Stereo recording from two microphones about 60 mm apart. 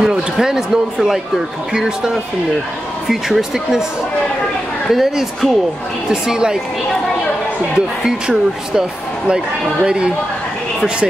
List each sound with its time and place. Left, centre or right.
0.0 s speech: centre
4.9 s speech: centre
7.7 s speech: centre
9.8 s speech: centre